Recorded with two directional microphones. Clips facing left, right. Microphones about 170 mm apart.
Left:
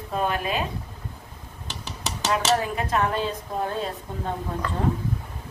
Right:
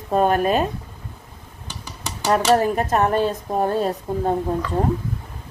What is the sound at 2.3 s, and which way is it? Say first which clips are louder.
A woman's voice: right 7 dB; 45° right (ahead or behind).